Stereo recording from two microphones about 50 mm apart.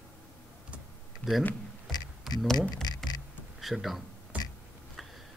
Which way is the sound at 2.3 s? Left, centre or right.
Centre.